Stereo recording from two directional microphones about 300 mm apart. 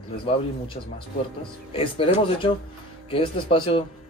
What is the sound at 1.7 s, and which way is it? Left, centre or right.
A man's voice, centre.